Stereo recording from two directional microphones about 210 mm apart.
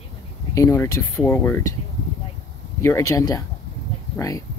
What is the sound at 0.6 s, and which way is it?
Speech, 15° left (ahead or behind).